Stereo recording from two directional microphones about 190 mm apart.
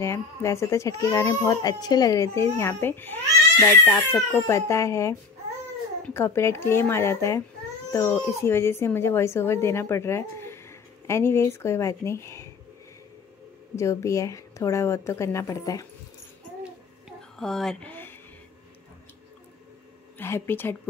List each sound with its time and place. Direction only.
0.0 s speech: 15° left (ahead or behind)
13.7 s speech: 15° left (ahead or behind)
17.4 s speech: centre (ahead or behind)
20.2 s speech: 10° left (ahead or behind)